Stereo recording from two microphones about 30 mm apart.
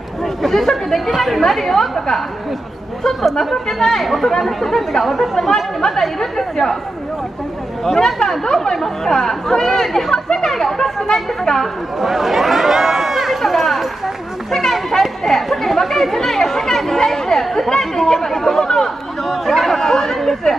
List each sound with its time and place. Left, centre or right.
0.2 s speech: centre
1.1 s speech: centre
1.4 s speech: centre
5.9 s speech: centre
8.5 s speech: centre
10.1 s speech: left
10.5 s speech: centre
12.0 s speech: centre
19.2 s speech: centre